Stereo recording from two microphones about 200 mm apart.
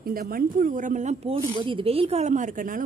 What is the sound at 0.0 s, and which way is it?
A woman's voice, 45° right (ahead or behind).